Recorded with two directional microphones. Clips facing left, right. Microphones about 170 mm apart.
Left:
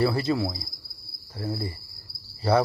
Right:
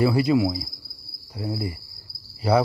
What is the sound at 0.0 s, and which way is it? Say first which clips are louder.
Speech: right 4 dB; 10° right (ahead or behind).